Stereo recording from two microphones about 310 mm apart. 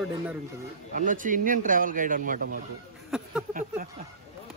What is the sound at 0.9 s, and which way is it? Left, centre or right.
Speech, right.